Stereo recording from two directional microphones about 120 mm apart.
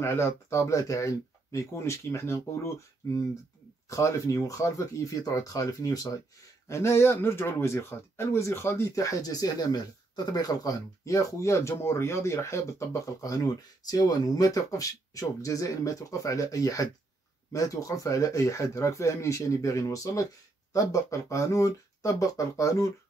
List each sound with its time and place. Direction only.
0.0 s speech: 20° left (ahead or behind)